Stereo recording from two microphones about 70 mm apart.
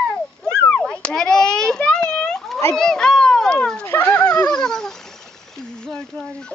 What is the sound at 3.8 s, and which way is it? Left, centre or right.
Dog, left.